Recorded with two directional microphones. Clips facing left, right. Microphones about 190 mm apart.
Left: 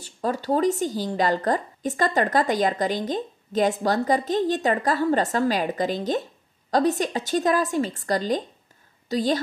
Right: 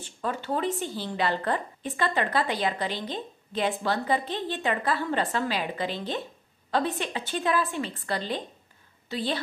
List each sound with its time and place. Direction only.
0.0 s a woman's voice: 40° left (ahead or behind)